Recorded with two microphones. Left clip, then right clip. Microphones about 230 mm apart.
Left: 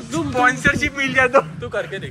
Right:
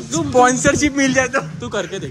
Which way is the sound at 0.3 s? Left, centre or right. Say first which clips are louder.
Right 3 dB; centre.